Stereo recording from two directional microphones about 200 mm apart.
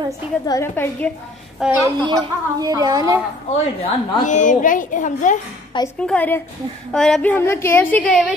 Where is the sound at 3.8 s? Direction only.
40° left (ahead or behind).